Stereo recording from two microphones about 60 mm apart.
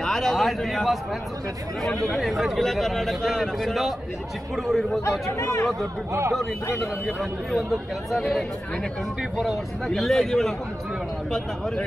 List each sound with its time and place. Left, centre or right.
0.0 s a man's voice: centre
2.0 s a man's voice: centre
5.4 s speech: left
7.1 s a man's voice: centre